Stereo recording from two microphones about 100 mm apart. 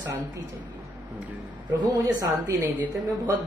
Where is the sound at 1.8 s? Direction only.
35° right (ahead or behind).